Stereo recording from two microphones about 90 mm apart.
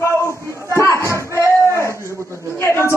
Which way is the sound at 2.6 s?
30° left (ahead or behind).